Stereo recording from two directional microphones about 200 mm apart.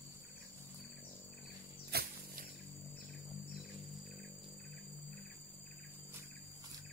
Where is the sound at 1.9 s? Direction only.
50° right (ahead or behind).